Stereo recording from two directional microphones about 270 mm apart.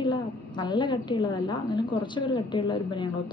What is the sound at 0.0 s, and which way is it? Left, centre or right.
Speech, centre.